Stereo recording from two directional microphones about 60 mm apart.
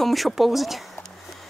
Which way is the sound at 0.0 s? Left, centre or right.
Centre.